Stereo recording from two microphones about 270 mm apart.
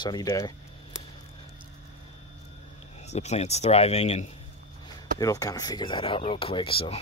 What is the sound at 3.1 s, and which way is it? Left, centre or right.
Speech, left.